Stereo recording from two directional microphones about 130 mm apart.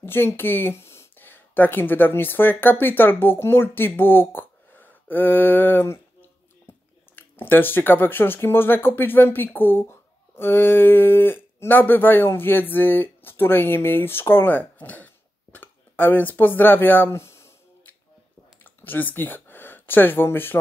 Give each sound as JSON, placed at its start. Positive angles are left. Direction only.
{"t": 0.0, "sound": "speech", "side_deg": 15}
{"t": 7.2, "sound": "speech", "side_deg": 15}
{"t": 18.6, "sound": "a sound", "side_deg": 15}